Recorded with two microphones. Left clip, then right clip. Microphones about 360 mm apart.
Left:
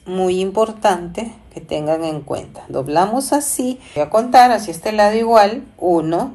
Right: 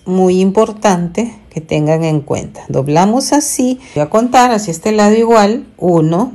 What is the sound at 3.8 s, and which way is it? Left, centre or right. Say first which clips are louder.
Speech: right 1 dB; right.